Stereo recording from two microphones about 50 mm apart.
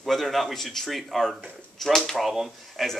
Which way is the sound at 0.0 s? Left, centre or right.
Centre.